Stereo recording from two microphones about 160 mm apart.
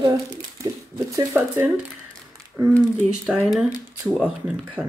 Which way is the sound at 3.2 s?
Centre (ahead or behind).